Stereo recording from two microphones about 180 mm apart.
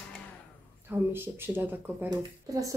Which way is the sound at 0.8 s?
10° right (ahead or behind).